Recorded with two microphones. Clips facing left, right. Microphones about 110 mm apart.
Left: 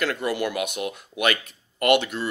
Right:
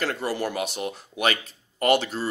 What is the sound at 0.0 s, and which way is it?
Speech, 35° right (ahead or behind).